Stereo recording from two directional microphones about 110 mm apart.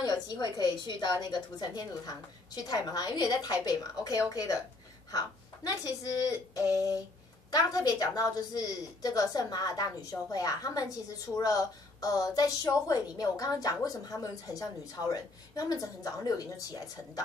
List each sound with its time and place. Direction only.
0.0 s a woman's voice: 40° left (ahead or behind)